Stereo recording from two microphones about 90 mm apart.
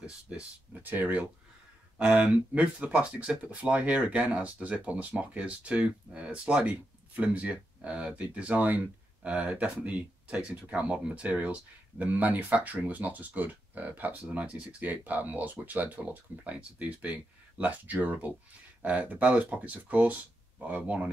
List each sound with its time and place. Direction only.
0.0 s speech: 10° right (ahead or behind)